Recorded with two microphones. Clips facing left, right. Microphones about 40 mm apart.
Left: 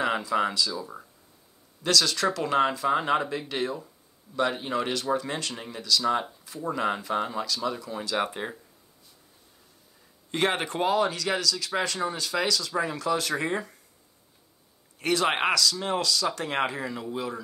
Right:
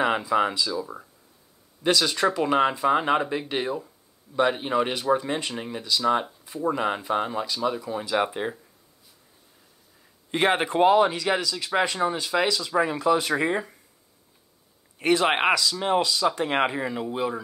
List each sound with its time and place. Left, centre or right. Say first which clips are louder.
0.0 s speech: right 3 dB; centre
1.8 s speech: right 2 dB; centre
8.3 s speech: right 4 dB; centre
10.3 s speech: right 4 dB; right
15.0 s speech: right 3 dB; right